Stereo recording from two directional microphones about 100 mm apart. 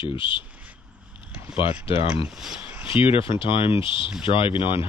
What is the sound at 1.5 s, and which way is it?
Speech, 65° left (ahead or behind).